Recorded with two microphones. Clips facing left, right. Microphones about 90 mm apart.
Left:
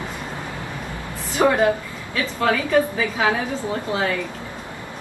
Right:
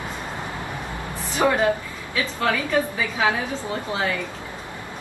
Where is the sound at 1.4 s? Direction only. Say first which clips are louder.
Left 2 dB; 10° left (ahead or behind).